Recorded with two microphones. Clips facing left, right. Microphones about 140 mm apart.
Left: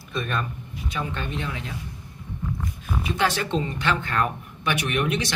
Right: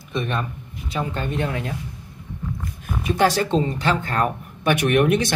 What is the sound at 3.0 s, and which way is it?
Speech, 45° right (ahead or behind).